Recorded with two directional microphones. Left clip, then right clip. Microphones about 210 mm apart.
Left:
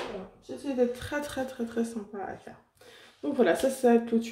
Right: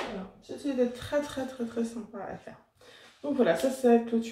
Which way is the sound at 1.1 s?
45° left (ahead or behind).